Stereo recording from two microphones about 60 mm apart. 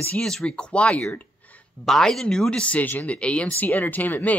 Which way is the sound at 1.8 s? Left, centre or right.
Centre.